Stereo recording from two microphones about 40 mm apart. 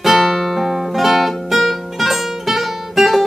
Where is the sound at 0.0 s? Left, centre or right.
Centre.